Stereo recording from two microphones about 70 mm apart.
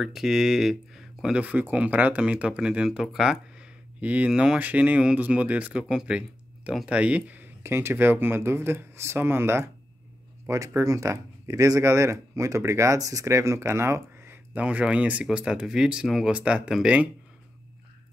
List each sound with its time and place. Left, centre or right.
0.0 s speech: centre
1.4 s speech: centre
4.3 s speech: centre
4.6 s speech: right
7.6 s speech: right
10.5 s speech: right
14.5 s speech: centre